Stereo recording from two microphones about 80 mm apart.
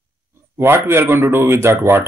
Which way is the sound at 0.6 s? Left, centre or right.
Right.